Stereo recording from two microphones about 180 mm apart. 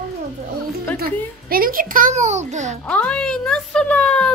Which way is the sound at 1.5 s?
50° right (ahead or behind).